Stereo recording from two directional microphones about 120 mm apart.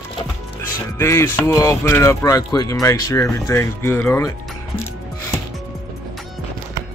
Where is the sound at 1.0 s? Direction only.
20° left (ahead or behind).